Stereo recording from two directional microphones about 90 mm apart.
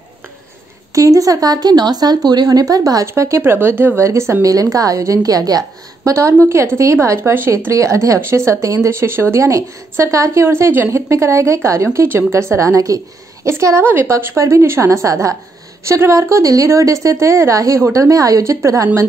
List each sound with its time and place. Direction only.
0.9 s speech: 40° right (ahead or behind)